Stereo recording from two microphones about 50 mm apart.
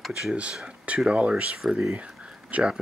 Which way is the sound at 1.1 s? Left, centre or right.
Right.